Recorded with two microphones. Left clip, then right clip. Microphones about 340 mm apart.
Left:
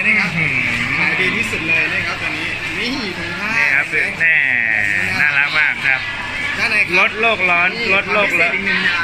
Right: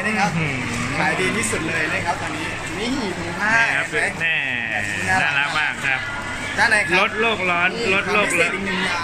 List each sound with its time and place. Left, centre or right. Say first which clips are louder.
5.4 s a sound: left 6 dB; centre
6.6 s speech: even; right
7.2 s speech: left 5 dB; centre